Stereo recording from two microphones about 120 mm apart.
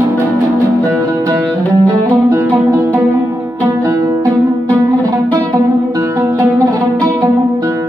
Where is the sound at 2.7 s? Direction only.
25° right (ahead or behind).